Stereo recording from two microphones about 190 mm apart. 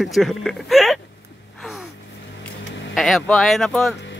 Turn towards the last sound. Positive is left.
turn(degrees=0)  # may be behind; listen again after turning